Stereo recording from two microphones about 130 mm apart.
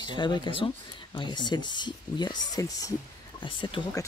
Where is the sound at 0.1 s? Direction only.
35° left (ahead or behind).